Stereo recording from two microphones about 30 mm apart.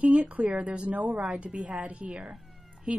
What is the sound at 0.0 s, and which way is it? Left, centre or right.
A woman's voice, right.